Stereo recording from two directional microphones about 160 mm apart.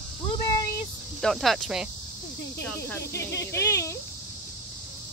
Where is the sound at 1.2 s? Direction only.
Centre (ahead or behind).